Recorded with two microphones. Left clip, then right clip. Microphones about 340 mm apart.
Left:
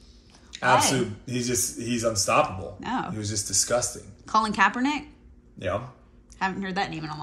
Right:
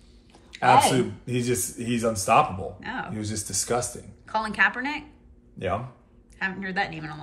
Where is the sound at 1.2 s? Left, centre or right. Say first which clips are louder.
Right 1 dB; right.